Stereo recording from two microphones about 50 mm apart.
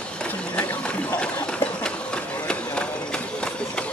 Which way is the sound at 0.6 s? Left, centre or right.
Left.